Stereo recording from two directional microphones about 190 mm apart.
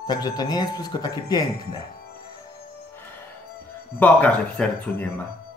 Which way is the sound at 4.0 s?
10° left (ahead or behind).